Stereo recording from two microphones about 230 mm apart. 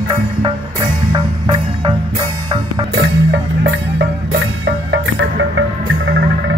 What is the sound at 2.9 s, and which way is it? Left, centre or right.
Music, right.